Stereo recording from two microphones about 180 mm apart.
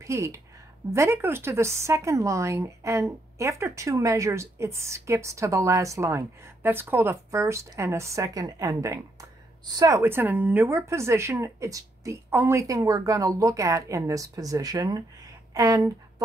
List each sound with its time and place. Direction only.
0.0 s speech: 15° right (ahead or behind)